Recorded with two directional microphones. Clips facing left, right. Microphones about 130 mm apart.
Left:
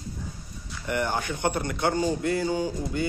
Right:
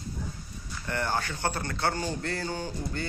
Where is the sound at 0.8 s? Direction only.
15° left (ahead or behind).